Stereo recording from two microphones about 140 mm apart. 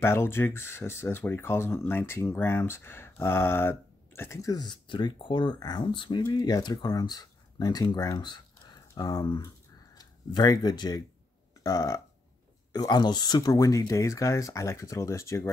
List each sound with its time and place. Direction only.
0.0 s speech: 15° left (ahead or behind)